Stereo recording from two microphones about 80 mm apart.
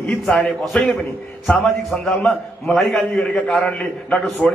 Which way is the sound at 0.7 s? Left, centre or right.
Centre.